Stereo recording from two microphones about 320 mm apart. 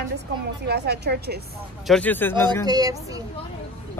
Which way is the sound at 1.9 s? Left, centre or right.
Centre.